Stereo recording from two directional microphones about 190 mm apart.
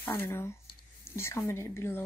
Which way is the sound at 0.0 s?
10° left (ahead or behind).